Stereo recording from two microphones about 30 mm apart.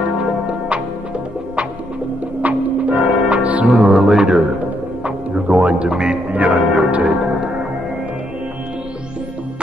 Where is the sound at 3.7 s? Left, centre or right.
Centre.